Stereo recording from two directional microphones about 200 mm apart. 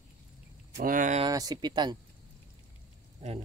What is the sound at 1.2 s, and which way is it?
Speech, 20° right (ahead or behind).